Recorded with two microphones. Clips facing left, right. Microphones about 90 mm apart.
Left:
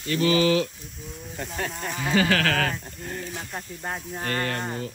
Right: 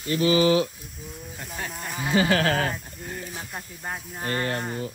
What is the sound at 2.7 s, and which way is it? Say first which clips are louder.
Speech: left 1 dB; 5° right (ahead or behind).